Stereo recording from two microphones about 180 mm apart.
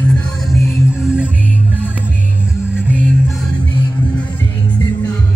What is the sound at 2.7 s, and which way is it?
Music, 5° right (ahead or behind).